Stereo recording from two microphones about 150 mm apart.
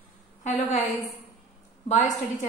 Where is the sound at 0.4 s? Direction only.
50° left (ahead or behind).